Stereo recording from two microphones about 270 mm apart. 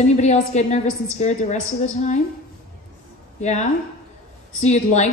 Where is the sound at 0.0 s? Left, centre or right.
Left.